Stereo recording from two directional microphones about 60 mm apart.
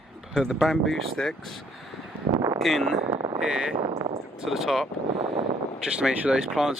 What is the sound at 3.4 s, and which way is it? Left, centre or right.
Speech, centre.